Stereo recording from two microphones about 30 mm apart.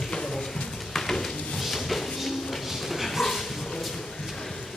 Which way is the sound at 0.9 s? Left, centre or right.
Centre.